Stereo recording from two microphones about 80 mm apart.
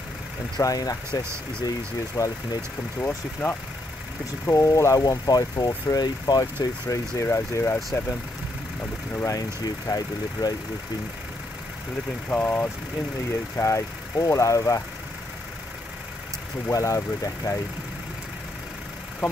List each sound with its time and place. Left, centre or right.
0.6 s speech: left
3.0 s speech: left
4.5 s speech: left
7.2 s speech: left
9.8 s speech: left
12.3 s speech: left
13.6 s speech: left
16.7 s speech: left